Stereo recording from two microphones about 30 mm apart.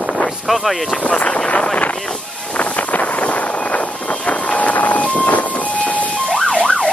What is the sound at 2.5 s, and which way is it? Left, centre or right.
Wind noise, left.